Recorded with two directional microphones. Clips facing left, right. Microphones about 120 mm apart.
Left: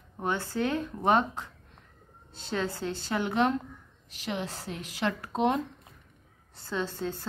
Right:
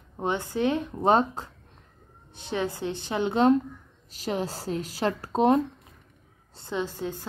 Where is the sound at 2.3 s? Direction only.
15° right (ahead or behind); by 5.6 s 35° right (ahead or behind).